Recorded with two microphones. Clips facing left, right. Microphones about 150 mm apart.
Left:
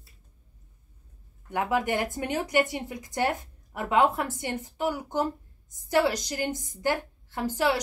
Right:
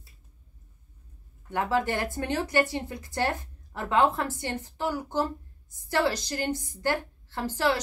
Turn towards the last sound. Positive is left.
turn(degrees=15)  # may be behind; listen again after turning